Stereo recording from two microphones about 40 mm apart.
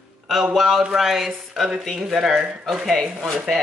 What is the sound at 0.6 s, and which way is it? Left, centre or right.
A woman's voice, centre.